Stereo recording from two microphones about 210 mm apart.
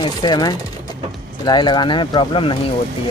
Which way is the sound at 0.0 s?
20° left (ahead or behind).